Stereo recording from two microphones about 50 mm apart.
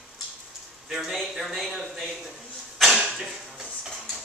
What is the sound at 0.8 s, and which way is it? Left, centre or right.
Speech, centre.